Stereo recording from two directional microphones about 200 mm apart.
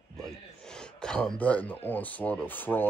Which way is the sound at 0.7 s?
5° left (ahead or behind).